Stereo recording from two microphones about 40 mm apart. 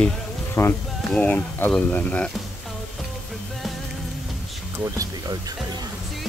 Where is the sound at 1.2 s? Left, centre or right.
Left.